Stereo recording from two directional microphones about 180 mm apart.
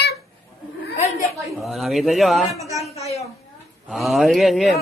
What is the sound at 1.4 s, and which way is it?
Speech, centre (ahead or behind).